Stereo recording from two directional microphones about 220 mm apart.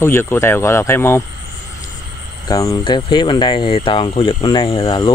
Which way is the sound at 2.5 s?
15° left (ahead or behind).